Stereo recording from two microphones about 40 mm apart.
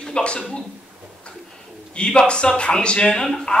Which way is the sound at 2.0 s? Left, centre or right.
Left.